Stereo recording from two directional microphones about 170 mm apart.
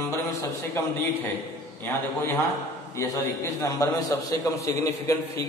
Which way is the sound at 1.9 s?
15° left (ahead or behind).